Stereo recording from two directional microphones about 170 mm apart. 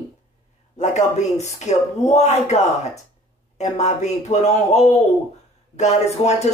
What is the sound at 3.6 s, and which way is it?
Speech, 40° left (ahead or behind).